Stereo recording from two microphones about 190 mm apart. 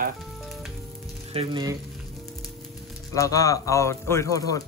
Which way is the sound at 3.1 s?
15° left (ahead or behind).